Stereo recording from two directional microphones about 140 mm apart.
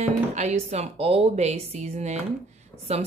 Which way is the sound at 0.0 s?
55° right (ahead or behind).